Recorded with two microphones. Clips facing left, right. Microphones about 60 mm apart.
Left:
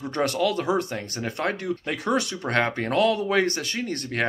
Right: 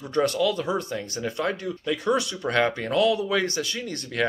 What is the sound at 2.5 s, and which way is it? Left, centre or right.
Speech, left.